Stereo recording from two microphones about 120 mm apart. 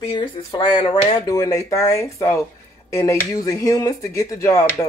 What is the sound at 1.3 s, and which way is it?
Speech, 30° left (ahead or behind).